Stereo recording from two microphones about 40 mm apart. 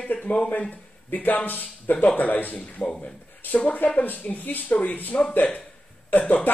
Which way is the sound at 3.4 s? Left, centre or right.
Left.